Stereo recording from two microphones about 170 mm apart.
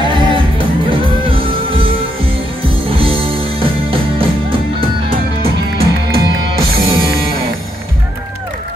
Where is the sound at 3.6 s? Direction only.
30° right (ahead or behind).